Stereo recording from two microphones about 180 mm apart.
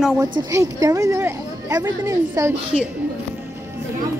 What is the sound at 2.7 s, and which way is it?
Speech, 45° left (ahead or behind).